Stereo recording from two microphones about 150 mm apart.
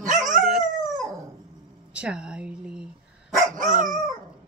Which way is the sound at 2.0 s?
5° right (ahead or behind).